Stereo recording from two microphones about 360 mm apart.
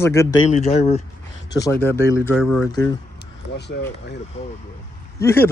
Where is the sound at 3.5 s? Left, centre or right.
Left.